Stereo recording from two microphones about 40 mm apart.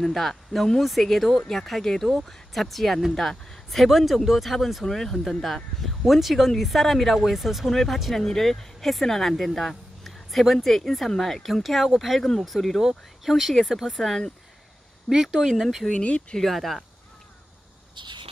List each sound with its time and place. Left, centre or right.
0.0 s speech: centre
3.7 s speech: centre
15.6 s speech: centre
15.9 s speech: left
16.3 s speech: centre